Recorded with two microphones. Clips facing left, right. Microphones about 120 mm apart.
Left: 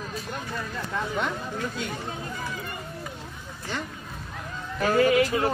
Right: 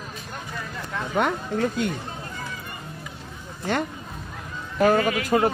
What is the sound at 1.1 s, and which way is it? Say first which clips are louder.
Speech: right 6 dB; 60° right (ahead or behind).